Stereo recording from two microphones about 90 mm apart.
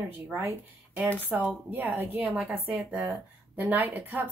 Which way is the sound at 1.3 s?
10° right (ahead or behind).